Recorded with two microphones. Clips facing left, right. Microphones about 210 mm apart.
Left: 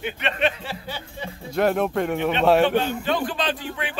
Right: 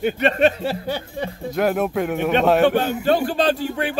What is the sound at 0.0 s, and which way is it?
Speech, 40° right (ahead or behind).